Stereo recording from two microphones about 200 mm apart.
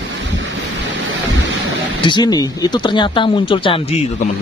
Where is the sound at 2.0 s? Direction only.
20° left (ahead or behind).